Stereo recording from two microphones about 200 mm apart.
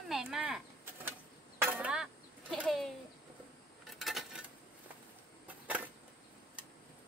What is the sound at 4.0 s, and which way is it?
Coin, centre (ahead or behind).